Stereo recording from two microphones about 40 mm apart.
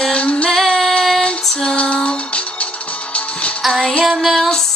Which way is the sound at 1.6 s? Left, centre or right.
Left.